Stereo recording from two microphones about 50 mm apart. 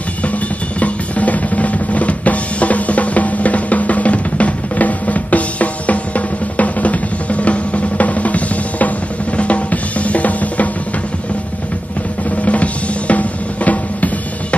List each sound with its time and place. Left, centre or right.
0.7 s drum: left
12.4 s drum: left